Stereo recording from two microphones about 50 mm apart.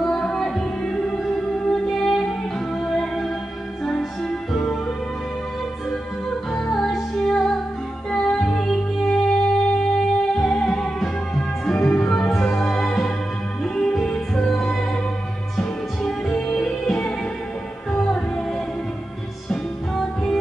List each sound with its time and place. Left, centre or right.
0.0 s music: centre
6.5 s music: centre
16.0 s music: centre